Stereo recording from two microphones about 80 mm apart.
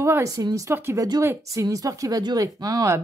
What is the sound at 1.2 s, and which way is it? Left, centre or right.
A woman's voice, right.